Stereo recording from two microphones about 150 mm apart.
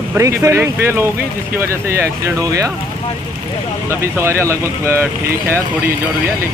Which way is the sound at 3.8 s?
15° right (ahead or behind).